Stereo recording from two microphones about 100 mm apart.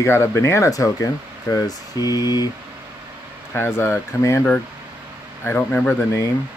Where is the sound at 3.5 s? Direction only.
25° left (ahead or behind).